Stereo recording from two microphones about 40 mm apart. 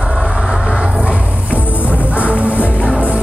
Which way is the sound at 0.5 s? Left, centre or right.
Right.